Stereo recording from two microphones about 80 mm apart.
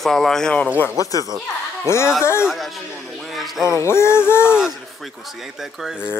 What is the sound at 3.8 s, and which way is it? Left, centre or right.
Speech, left.